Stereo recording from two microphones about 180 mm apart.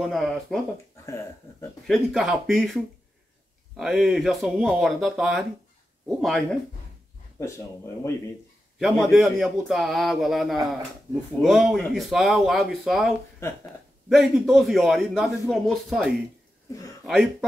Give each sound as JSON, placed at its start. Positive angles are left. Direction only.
{"t": 0.0, "sound": "a man's voice", "side_deg": 0}
{"t": 1.0, "sound": "speech", "side_deg": 15}
{"t": 1.9, "sound": "a man's voice", "side_deg": 0}
{"t": 7.3, "sound": "speech", "side_deg": 15}
{"t": 8.7, "sound": "a man's voice", "side_deg": 0}